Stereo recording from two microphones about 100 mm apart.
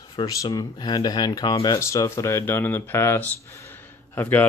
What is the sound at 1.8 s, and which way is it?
Speech, 30° left (ahead or behind).